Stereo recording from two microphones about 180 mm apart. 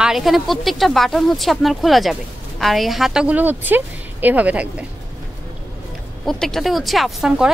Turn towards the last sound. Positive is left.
turn(degrees=0)  # may be behind; listen again after turning